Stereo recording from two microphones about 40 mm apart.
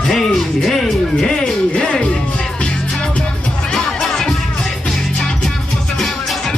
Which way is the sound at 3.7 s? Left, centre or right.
Centre.